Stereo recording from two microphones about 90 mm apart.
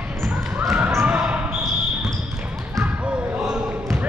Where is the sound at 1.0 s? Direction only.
15° right (ahead or behind).